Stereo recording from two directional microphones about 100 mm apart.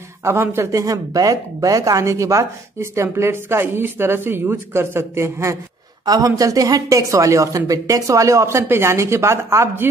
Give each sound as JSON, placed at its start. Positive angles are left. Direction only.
{"t": 0.2, "sound": "speech", "side_deg": -25}